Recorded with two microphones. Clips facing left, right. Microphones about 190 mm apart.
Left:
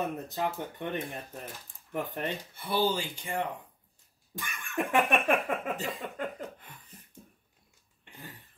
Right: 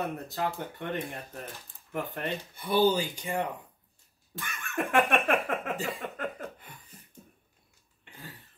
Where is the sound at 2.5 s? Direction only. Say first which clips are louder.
Right 5 dB; 15° right (ahead or behind).